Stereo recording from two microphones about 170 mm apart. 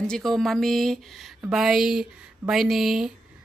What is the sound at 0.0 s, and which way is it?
A woman's voice, 5° left (ahead or behind).